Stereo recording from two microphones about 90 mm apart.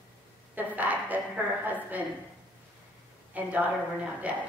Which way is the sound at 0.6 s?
20° right (ahead or behind).